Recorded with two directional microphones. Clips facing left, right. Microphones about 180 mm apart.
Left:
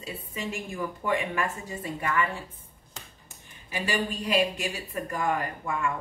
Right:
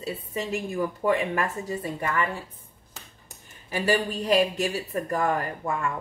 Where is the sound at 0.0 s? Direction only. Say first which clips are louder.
Right 4 dB; 35° right (ahead or behind).